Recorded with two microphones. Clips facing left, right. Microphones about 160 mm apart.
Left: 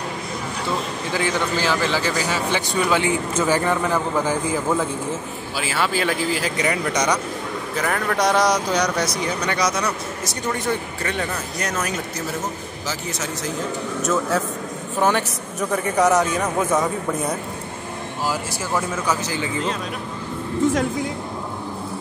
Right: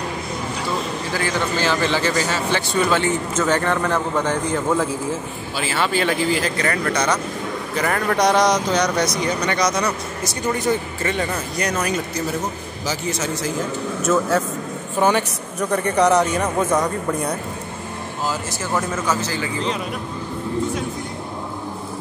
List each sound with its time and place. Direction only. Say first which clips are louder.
1.1 s a man's voice: left 1 dB; 15° left (ahead or behind)
6.6 s a man's voice: even; 15° left (ahead or behind)
7.7 s speech: right 2 dB; centre (ahead or behind)
14.3 s speech: right 2 dB; centre (ahead or behind)
18.3 s a man's voice: right 1 dB; 10° left (ahead or behind)